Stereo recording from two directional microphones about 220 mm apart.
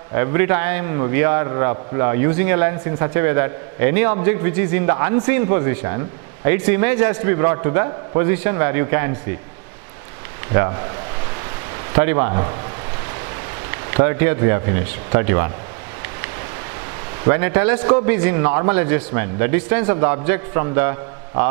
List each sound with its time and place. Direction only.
0.1 s a man's voice: 15° right (ahead or behind)
10.5 s a man's voice: 15° right (ahead or behind)
11.9 s a man's voice: 15° right (ahead or behind)
13.7 s a man's voice: 15° right (ahead or behind)
17.2 s a man's voice: 15° right (ahead or behind)